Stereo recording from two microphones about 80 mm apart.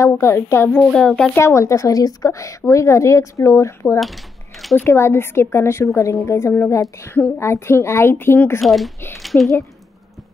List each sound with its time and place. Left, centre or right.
0.0 s a woman's voice: left
0.9 s speech: centre
1.3 s a woman's voice: left
4.0 s a sound: centre
4.8 s a woman's voice: left
8.5 s a woman's voice: centre